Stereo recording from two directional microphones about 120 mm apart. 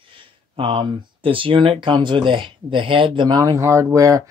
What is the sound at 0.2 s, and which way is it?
Speech, 45° right (ahead or behind).